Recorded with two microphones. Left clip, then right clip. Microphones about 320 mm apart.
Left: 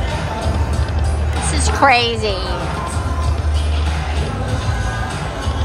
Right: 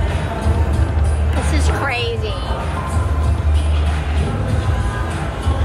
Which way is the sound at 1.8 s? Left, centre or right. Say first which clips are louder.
Left 12 dB; centre.